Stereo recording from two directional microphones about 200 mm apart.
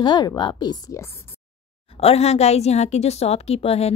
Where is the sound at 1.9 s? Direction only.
30° left (ahead or behind).